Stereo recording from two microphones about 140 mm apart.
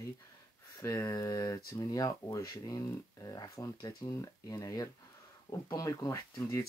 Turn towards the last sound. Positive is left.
turn(degrees=20)  # may be behind; listen again after turning